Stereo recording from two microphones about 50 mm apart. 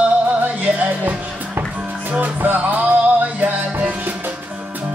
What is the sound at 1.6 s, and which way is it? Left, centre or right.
Music, right.